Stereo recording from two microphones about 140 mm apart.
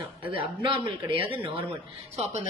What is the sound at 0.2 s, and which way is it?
A woman's voice, 40° right (ahead or behind).